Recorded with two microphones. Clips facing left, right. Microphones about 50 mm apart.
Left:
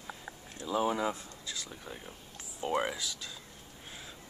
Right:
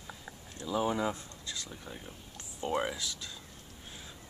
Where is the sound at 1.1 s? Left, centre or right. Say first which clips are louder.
Even; centre.